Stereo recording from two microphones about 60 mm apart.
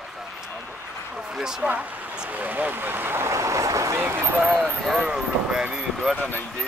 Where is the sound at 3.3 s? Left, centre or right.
Right.